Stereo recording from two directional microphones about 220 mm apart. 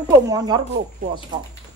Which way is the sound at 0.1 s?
20° right (ahead or behind).